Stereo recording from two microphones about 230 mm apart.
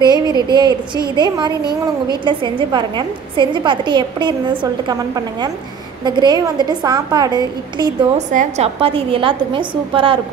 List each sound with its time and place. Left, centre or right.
0.0 s a woman's voice: centre
8.3 s a woman's voice: right